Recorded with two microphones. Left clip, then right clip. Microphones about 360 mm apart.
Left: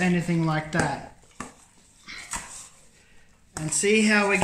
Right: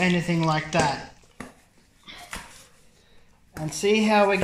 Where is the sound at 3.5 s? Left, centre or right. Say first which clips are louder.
Even; centre.